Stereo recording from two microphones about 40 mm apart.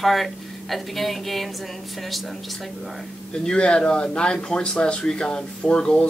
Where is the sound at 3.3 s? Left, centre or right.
Left.